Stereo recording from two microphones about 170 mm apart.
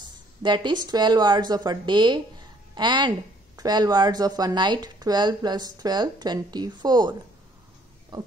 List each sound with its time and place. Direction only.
0.4 s speech: 25° right (ahead or behind)